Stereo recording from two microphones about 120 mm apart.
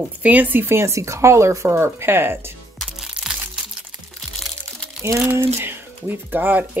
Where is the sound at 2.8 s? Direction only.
5° right (ahead or behind).